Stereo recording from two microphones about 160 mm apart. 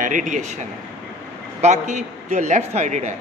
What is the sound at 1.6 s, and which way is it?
A man's voice, 50° right (ahead or behind).